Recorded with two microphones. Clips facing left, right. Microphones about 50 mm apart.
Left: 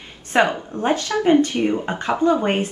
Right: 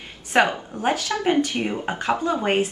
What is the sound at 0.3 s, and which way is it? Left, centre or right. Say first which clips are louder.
Speech: left 1 dB; centre.